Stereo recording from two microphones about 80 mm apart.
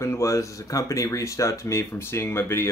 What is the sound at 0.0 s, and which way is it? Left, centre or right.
Speech, left.